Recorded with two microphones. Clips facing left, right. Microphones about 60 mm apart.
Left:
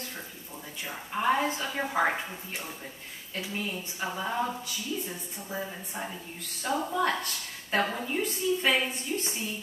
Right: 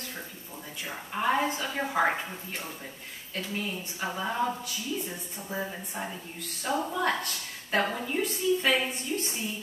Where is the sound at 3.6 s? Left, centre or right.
Centre.